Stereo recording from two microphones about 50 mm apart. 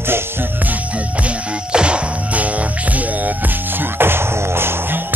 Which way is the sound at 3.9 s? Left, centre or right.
Right.